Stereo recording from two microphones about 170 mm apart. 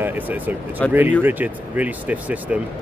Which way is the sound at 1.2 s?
10° right (ahead or behind).